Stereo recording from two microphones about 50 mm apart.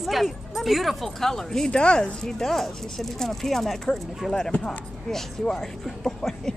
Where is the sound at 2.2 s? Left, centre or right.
Centre.